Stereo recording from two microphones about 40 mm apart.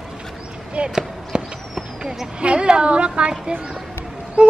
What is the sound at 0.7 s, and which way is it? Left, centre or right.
Basketball bounce, right.